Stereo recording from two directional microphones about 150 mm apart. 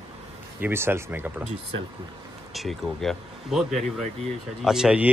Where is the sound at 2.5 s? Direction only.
Centre (ahead or behind).